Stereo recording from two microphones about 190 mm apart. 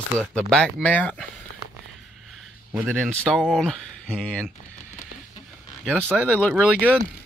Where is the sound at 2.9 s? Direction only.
Centre (ahead or behind).